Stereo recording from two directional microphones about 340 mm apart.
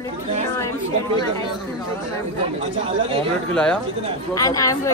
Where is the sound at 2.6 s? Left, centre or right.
Centre.